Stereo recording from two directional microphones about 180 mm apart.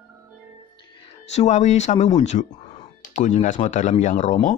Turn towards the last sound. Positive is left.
turn(degrees=45)  # may be behind; listen again after turning